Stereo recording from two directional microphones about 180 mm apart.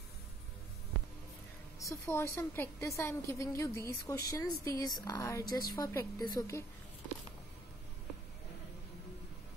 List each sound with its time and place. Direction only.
1.8 s a woman's voice: 15° left (ahead or behind)